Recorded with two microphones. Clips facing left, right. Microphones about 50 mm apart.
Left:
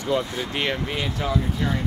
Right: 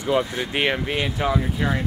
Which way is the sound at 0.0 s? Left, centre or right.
Centre.